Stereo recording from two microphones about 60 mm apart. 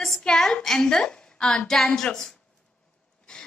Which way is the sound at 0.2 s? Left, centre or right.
Centre.